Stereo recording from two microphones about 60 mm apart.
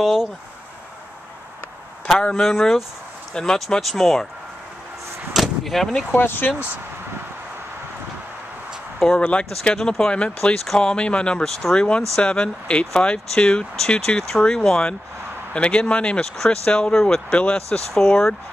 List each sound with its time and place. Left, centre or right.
0.0 s speech: centre
2.4 s speech: centre
5.3 s door: centre
6.1 s speech: left
9.2 s speech: centre